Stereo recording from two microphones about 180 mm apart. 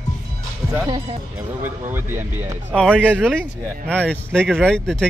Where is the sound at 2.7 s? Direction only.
5° left (ahead or behind).